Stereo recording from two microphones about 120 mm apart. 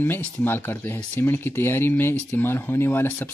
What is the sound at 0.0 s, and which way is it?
Speech, 15° left (ahead or behind).